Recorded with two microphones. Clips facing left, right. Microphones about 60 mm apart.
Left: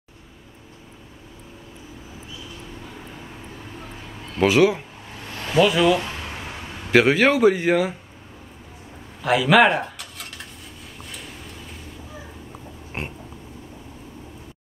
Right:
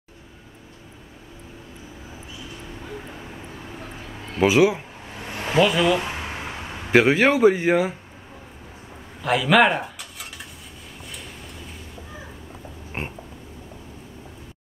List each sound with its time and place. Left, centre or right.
4.4 s speech: centre
5.2 s a sound: right
5.7 s speech: centre
5.9 s a sound: centre
7.0 s speech: centre
9.2 s cutlery: centre